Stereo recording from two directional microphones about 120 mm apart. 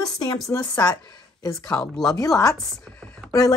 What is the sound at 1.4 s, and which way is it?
Speech, 30° left (ahead or behind).